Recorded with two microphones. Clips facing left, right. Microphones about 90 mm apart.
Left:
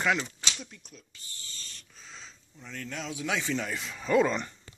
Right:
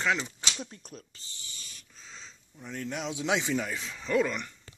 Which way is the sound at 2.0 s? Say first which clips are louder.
Even; centre (ahead or behind).